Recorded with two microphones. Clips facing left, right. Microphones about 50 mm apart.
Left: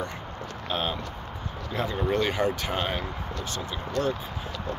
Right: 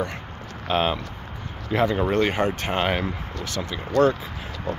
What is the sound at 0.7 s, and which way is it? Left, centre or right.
Speech, right.